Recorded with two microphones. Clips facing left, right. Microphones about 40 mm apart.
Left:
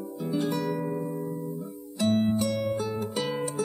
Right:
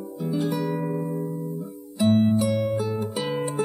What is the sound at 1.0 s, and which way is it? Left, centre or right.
Music, right.